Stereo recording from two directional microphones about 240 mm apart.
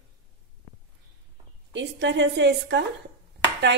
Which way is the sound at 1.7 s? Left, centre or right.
Right.